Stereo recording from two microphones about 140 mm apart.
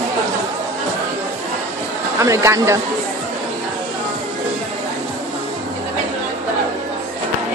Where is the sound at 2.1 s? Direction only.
20° right (ahead or behind).